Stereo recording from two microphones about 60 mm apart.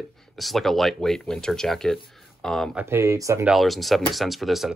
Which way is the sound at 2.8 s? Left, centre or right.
Right.